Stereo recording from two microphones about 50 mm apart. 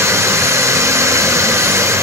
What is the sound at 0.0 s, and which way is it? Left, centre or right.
Hair dryer, right.